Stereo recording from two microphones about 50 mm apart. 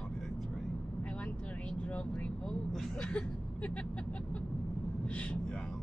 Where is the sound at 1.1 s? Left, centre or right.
Left.